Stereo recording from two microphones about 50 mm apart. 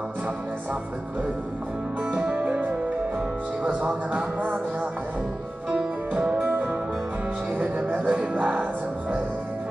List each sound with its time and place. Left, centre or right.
2.0 s music: right
3.6 s music: right
6.1 s music: right